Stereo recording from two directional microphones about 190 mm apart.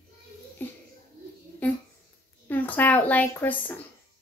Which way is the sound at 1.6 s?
10° left (ahead or behind).